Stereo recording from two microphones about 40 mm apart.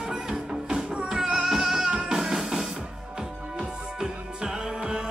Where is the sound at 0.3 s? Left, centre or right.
Right.